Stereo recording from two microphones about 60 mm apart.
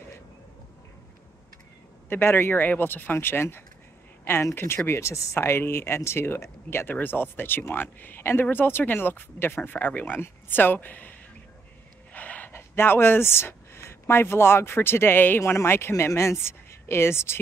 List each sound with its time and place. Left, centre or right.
2.0 s speech: left
4.2 s a sound: left
4.6 s speech: left
12.1 s gasp: left
12.5 s speech: left